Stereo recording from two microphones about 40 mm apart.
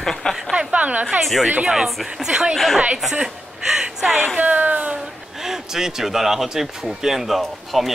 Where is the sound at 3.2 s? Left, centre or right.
Centre.